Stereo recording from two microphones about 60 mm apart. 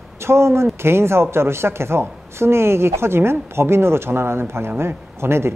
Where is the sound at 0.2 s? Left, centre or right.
Right.